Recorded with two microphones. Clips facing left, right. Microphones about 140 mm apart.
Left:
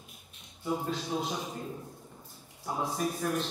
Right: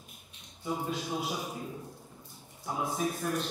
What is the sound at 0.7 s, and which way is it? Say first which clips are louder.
Speech: left 1 dB; 10° right (ahead or behind).